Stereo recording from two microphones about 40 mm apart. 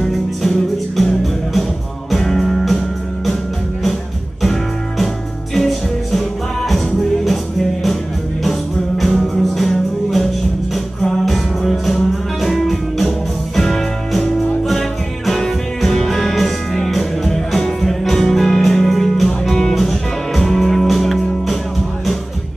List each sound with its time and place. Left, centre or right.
0.1 s music: centre
4.4 s music: centre
8.5 s music: centre